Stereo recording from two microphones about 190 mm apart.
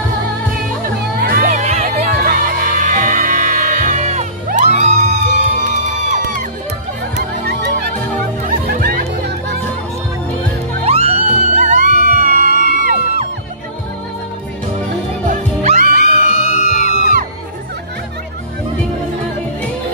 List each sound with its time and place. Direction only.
0.6 s music: 50° right (ahead or behind)
1.5 s music: 35° right (ahead or behind)
1.9 s music: 50° right (ahead or behind)
7.4 s music: 60° right (ahead or behind)
7.9 s music: 45° right (ahead or behind)
10.9 s music: 30° right (ahead or behind); by 12.5 s 45° right (ahead or behind)
12.5 s music: 45° left (ahead or behind)
15.2 s music: 40° right (ahead or behind)
16.0 s music: 40° left (ahead or behind)